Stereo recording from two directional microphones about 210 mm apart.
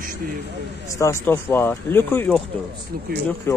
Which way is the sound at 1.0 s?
10° left (ahead or behind).